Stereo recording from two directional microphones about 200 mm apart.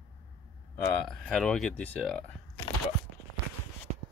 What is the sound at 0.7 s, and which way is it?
Speech, 10° left (ahead or behind).